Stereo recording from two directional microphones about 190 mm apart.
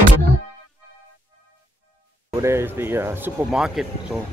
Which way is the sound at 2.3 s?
15° right (ahead or behind).